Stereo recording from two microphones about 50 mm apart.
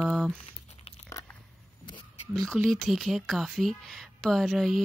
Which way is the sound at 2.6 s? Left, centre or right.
Centre.